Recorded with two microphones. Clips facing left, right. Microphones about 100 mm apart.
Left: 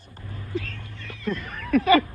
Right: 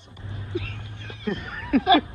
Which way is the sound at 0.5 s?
45° left (ahead or behind).